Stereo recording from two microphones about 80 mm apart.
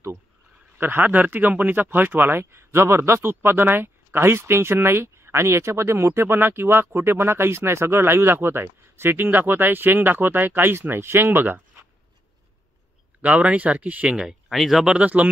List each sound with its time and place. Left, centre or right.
0.7 s speech: right
13.2 s speech: centre
14.1 s speech: centre
15.0 s speech: centre